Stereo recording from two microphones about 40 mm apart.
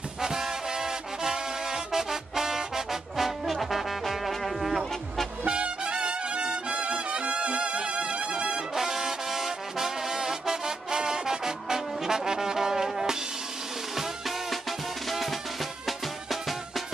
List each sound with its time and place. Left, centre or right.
0.2 s music: centre
5.5 s music: right
8.7 s trombone: centre
16.3 s music: centre